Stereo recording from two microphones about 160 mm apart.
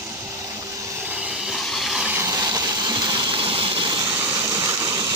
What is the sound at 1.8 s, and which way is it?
Water, 5° right (ahead or behind).